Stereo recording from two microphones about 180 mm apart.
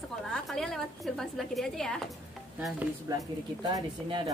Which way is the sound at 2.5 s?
5° right (ahead or behind).